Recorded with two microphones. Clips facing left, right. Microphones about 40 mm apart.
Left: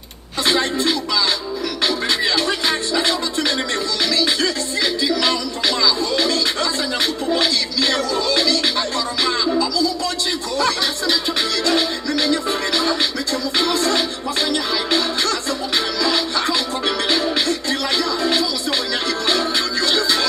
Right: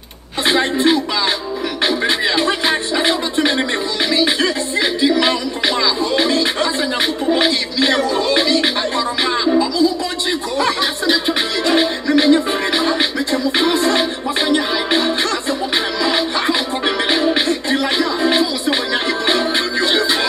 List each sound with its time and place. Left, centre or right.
0.5 s a sound: right
1.9 s music: right
10.6 s music: right